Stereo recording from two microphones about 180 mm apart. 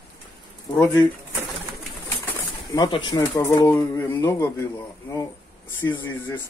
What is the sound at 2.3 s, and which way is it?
Speech, 20° left (ahead or behind).